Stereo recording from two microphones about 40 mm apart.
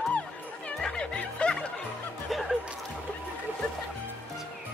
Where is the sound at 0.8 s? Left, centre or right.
Left.